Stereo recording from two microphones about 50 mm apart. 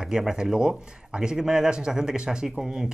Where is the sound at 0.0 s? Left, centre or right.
Centre.